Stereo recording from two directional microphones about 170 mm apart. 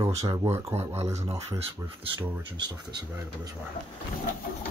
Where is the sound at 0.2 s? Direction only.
20° right (ahead or behind).